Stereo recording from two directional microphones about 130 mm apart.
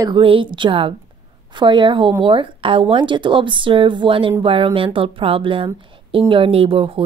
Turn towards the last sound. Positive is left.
turn(degrees=-45)  # may be behind; listen again after turning